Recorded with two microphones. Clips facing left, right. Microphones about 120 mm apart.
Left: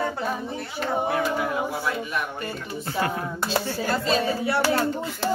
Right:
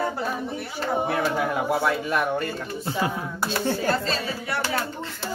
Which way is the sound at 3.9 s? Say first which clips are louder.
Left 2 dB; 10° left (ahead or behind).